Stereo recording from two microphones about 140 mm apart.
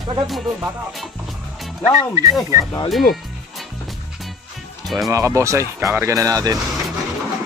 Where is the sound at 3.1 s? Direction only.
Centre (ahead or behind).